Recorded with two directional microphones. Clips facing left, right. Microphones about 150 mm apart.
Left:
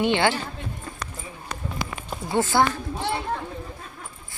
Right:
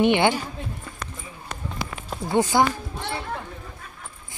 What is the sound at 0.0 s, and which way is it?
Speech, 20° right (ahead or behind).